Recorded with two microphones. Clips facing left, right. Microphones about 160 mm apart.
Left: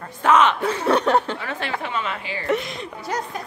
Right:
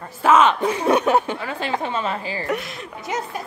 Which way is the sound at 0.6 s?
10° right (ahead or behind).